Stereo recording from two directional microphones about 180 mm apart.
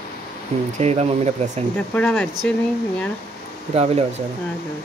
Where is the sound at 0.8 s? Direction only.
35° right (ahead or behind).